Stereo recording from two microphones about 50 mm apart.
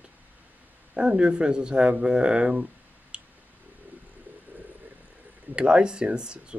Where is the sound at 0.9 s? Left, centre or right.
Right.